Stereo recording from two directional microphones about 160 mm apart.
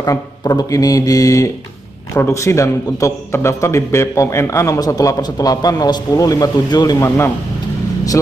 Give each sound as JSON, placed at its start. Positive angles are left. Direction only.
{"t": 0.0, "sound": "a man's voice", "side_deg": 20}